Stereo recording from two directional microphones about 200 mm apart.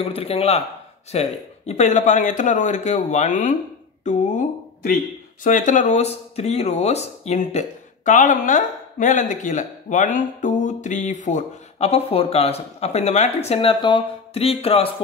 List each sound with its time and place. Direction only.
0.0 s a man's voice: 30° left (ahead or behind)